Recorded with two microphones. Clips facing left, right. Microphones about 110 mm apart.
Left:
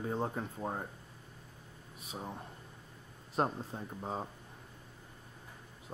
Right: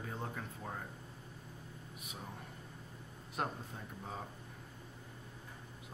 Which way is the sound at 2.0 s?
30° left (ahead or behind).